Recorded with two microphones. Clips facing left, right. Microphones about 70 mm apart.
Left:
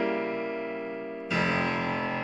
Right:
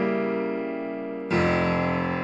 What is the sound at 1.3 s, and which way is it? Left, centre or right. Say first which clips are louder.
Music: right 5 dB; right.